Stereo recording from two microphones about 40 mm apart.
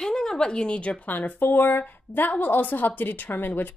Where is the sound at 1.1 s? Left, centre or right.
Left.